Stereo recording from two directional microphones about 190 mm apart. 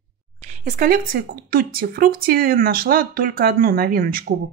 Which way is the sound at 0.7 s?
50° right (ahead or behind).